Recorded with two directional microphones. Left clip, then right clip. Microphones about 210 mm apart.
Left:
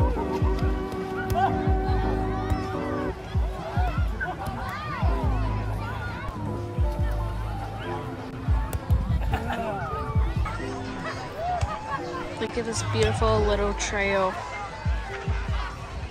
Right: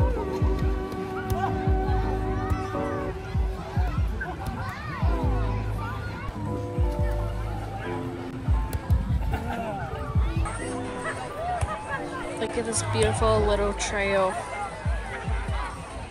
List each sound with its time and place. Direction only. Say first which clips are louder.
1.3 s music: left 5 dB; centre (ahead or behind)
9.3 s a sound: left 2 dB; 5° left (ahead or behind)
11.1 s music: left 2 dB; 35° right (ahead or behind)
12.4 s speech: right 2 dB; 15° left (ahead or behind)